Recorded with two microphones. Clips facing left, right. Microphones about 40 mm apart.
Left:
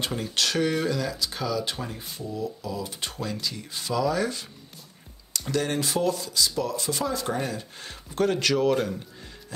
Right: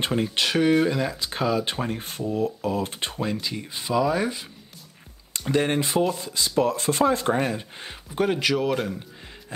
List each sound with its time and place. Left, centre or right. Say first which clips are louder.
0.0 s speech: right 4 dB; right; by 8.9 s centre